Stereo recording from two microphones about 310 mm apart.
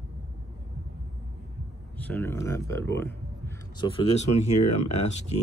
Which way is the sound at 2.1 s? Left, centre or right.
Centre.